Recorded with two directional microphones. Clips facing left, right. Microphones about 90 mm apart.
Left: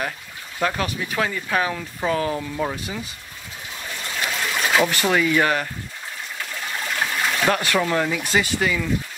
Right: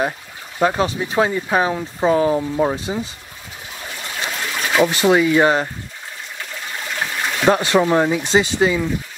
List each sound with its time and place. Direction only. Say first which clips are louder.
0.6 s speech: right 6 dB; 25° right (ahead or behind)
4.5 s speech: right 3 dB; 5° right (ahead or behind); by 5.7 s 25° right (ahead or behind)
7.0 s trickle: even; 5° right (ahead or behind)
7.4 s speech: right 7 dB; 25° right (ahead or behind)